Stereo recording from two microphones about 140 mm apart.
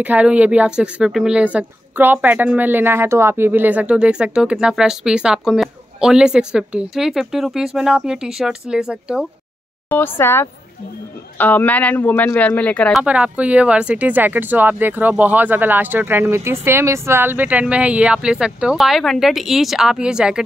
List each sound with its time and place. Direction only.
0.0 s speech: 10° right (ahead or behind)
9.8 s speech: 15° left (ahead or behind)
13.0 s speech: 10° right (ahead or behind)